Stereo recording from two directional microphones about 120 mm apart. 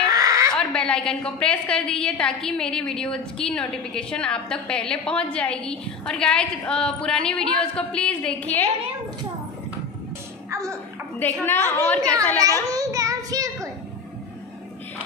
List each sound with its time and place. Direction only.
0.0 s a sound: 30° right (ahead or behind)
0.6 s a woman's voice: 10° left (ahead or behind)
10.5 s music: 25° right (ahead or behind)
11.4 s a woman's voice: 15° left (ahead or behind)
12.7 s child singing: 30° right (ahead or behind)